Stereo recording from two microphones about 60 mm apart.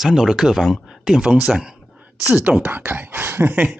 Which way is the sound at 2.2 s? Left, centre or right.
Right.